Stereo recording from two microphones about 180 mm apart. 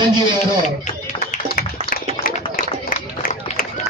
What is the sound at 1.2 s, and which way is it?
Run, 50° left (ahead or behind).